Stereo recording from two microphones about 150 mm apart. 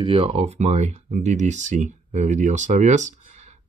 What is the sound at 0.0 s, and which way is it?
Speech, 40° right (ahead or behind).